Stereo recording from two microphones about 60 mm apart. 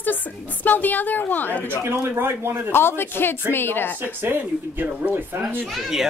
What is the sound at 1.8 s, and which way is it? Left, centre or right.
Speech, right.